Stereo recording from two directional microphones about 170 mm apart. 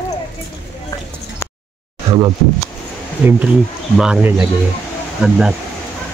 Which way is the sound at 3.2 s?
5° right (ahead or behind).